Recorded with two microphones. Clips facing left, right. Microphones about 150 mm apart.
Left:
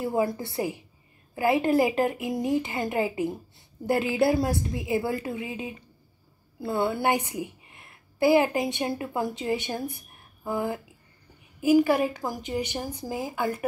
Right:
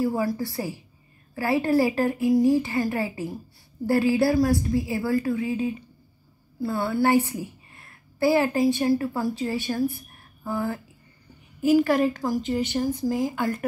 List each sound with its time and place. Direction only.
0.0 s a woman's voice: 20° left (ahead or behind)